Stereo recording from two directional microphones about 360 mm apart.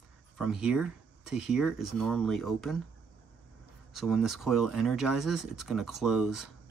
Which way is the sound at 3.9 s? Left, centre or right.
Centre.